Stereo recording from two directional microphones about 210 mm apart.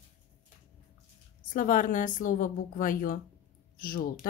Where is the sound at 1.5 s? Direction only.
40° left (ahead or behind).